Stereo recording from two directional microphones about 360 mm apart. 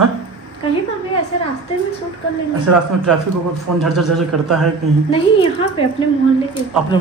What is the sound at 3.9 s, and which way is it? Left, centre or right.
Speech, centre.